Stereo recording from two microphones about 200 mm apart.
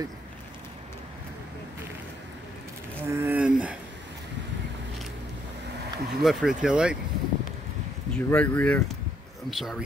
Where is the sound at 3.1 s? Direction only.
10° right (ahead or behind).